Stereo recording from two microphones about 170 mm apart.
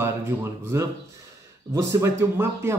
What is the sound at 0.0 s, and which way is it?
A man's voice, 15° right (ahead or behind).